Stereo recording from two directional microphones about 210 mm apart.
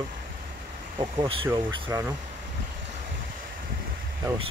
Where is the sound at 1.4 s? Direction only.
15° right (ahead or behind).